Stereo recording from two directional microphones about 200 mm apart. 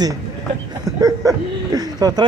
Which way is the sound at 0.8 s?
20° right (ahead or behind).